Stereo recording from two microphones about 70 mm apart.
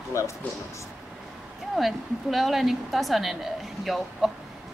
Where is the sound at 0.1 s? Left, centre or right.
Left.